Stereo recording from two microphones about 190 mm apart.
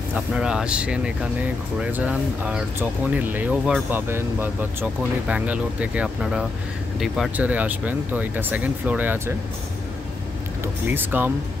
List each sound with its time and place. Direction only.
0.3 s speech: 5° right (ahead or behind)
10.6 s speech: 10° right (ahead or behind)